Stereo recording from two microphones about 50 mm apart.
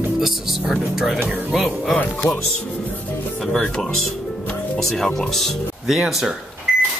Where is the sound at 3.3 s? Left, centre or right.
Centre.